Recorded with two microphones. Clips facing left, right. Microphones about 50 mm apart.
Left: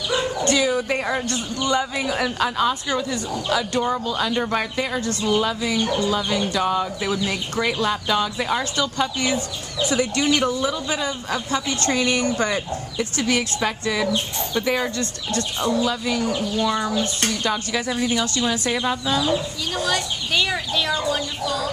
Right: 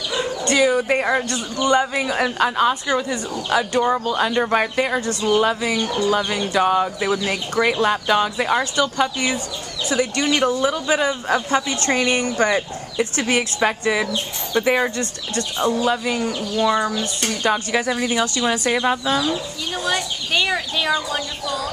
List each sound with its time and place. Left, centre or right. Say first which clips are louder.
0.5 s speech: right 5 dB; centre
9.8 s speech: even; centre
10.3 s speech: right 2 dB; right
11.6 s speech: even; centre
11.9 s speech: right 2 dB; right; by 21.6 s centre